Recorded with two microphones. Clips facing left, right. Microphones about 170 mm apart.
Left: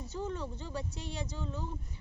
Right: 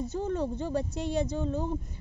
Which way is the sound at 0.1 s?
50° right (ahead or behind).